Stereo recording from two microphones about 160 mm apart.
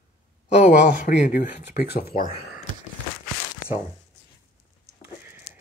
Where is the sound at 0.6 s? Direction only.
50° left (ahead or behind).